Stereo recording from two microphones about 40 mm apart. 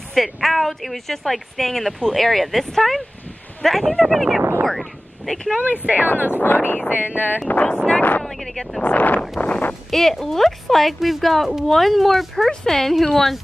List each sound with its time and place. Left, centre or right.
0.1 s speech: centre
4.0 s speech: centre
4.6 s speech: centre
5.9 s speech: left
7.6 s speech: left
8.2 s speech: centre
8.8 s speech: left
9.4 s a sound: left
9.8 s speech: centre